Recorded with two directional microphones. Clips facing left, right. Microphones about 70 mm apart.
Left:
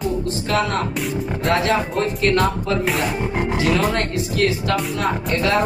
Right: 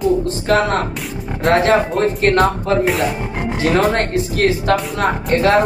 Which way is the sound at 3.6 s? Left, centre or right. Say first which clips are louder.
Right 6 dB; right.